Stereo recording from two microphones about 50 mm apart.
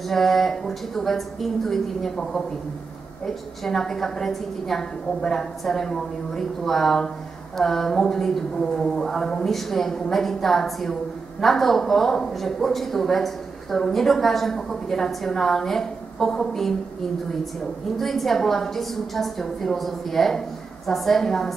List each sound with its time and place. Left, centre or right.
0.1 s a woman's voice: centre
17.9 s speech: centre